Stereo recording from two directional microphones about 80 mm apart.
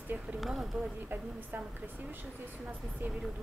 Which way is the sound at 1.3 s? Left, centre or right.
Right.